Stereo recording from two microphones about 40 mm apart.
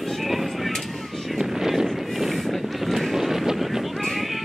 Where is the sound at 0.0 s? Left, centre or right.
Centre.